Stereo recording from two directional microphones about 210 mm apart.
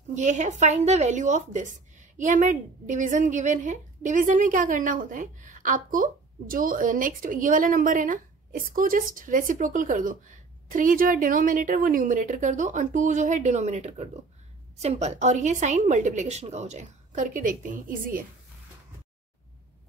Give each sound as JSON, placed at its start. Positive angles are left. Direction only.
{"t": 0.1, "sound": "a woman's voice", "side_deg": -35}